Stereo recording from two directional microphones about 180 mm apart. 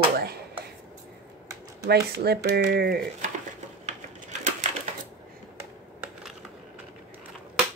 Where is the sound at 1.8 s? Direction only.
65° right (ahead or behind).